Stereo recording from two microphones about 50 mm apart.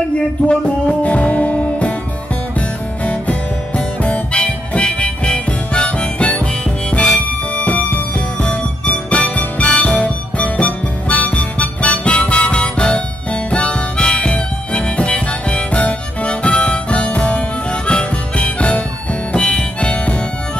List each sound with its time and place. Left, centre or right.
0.5 s music: left
3.0 s music: left
19.3 s harmonica: centre